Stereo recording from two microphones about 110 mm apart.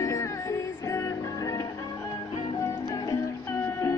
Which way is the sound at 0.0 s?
30° left (ahead or behind).